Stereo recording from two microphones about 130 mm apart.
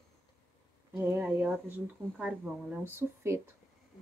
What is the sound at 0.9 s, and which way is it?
Speech, 20° right (ahead or behind).